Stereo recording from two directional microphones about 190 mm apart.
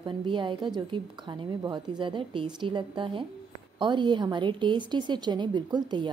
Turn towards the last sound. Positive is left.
turn(degrees=-25)  # may be behind; listen again after turning